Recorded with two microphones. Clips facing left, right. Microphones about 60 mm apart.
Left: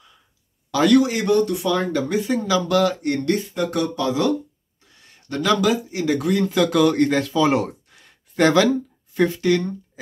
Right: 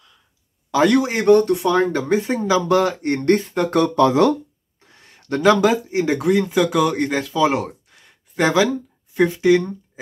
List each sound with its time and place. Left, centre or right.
0.7 s speech: right
3.3 s speech: right
6.4 s speech: centre